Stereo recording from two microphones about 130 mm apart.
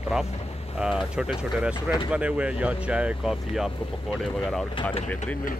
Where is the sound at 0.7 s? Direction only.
5° right (ahead or behind).